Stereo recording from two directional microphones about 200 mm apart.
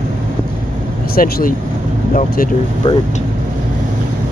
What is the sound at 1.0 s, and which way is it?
Speech, 50° left (ahead or behind).